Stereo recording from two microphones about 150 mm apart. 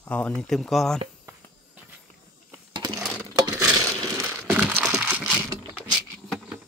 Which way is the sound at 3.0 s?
5° right (ahead or behind).